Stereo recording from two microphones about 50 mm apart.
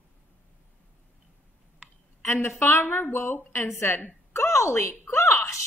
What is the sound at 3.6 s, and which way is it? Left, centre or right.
Speech, left.